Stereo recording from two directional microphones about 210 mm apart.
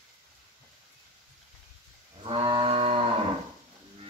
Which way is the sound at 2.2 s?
25° right (ahead or behind).